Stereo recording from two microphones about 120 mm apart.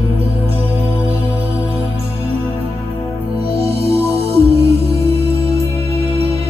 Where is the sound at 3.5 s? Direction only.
60° right (ahead or behind).